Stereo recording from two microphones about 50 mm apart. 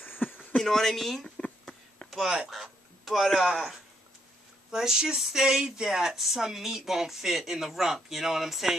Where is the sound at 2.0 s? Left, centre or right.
Centre.